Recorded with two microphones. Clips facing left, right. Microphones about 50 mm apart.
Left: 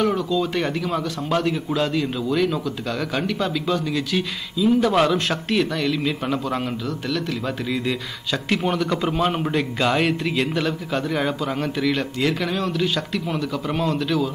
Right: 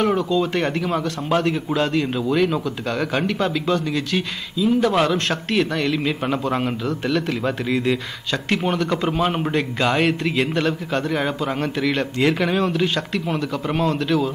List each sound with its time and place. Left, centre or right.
0.0 s a man's voice: centre